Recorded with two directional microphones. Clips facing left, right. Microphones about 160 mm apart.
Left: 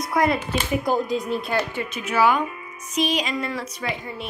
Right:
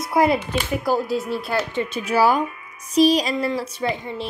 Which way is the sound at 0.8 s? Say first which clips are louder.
Right 1 dB; 5° right (ahead or behind).